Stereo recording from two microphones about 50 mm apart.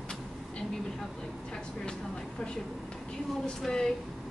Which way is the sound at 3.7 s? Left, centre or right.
Centre.